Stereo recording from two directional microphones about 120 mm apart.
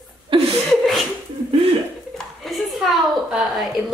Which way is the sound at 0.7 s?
Centre (ahead or behind).